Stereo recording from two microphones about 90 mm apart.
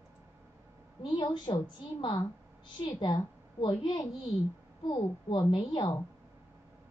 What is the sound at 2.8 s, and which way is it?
Speech, 65° left (ahead or behind).